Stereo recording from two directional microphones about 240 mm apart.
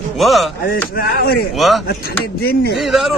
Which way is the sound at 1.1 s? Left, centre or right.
Left.